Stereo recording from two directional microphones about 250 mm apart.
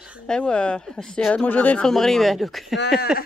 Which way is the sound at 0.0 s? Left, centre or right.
Centre.